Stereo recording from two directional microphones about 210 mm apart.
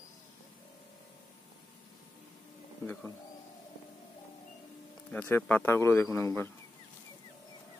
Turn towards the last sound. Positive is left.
turn(degrees=10)  # may be behind; listen again after turning